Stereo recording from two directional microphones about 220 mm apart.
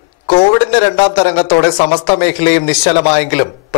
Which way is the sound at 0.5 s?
25° left (ahead or behind).